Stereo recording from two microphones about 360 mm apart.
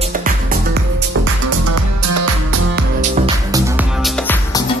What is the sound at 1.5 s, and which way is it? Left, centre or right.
Music, right.